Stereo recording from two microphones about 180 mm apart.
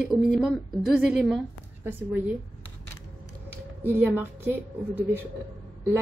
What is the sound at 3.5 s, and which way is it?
A woman's voice, 10° right (ahead or behind).